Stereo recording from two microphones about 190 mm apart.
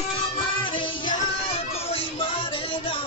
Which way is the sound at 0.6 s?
25° left (ahead or behind).